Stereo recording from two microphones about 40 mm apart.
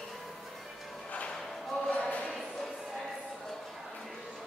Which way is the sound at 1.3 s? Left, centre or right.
Centre.